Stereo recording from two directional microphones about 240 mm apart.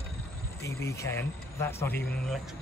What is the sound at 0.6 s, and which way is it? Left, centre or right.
Speech, centre.